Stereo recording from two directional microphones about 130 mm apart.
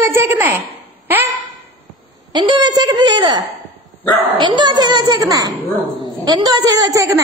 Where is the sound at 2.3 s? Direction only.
35° right (ahead or behind).